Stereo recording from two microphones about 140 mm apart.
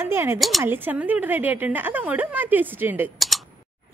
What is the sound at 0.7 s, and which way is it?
Speech, 15° right (ahead or behind).